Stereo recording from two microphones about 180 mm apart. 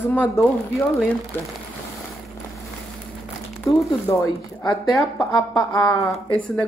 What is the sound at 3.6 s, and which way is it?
Speech, 15° left (ahead or behind).